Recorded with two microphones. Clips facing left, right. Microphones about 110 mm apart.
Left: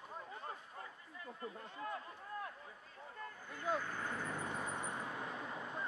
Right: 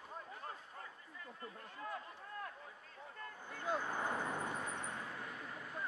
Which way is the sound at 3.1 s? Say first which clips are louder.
Left 1 dB; centre (ahead or behind).